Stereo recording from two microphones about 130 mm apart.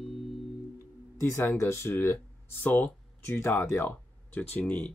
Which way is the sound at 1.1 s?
20° left (ahead or behind).